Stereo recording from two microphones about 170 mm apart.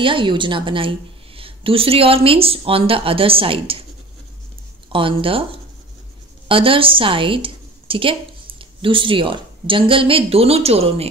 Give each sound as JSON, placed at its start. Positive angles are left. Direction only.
{"t": 0.0, "sound": "a woman's voice", "side_deg": -30}
{"t": 4.9, "sound": "a woman's voice", "side_deg": -30}